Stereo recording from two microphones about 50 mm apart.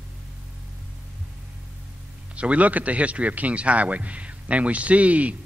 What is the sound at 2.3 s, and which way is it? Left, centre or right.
Speech, right.